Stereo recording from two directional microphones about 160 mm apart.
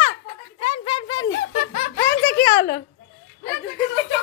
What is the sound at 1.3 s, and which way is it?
Snicker, 65° left (ahead or behind).